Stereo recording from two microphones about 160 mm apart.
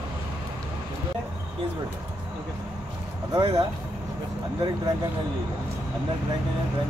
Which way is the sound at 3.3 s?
25° right (ahead or behind).